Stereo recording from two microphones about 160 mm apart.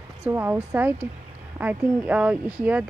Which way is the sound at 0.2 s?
15° right (ahead or behind).